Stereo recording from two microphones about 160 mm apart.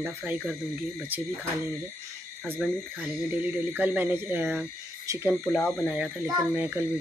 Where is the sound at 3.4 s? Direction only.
10° right (ahead or behind).